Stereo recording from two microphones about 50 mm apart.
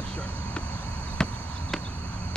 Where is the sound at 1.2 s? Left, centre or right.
Centre.